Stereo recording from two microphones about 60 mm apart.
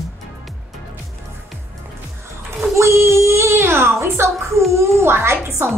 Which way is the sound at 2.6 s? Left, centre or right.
Right.